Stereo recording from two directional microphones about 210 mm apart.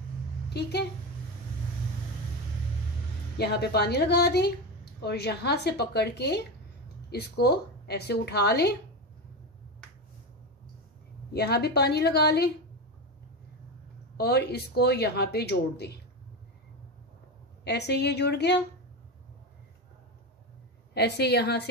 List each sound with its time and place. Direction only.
0.5 s a woman's voice: 50° left (ahead or behind)
3.3 s speech: 50° left (ahead or behind)
11.3 s speech: 50° left (ahead or behind)
14.1 s speech: 50° left (ahead or behind)
17.6 s speech: 55° left (ahead or behind)
20.9 s speech: 50° left (ahead or behind)